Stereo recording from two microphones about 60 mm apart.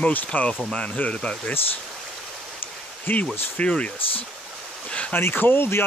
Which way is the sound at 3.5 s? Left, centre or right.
Centre.